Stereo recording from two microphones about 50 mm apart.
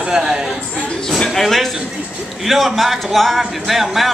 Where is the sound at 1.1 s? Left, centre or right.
Centre.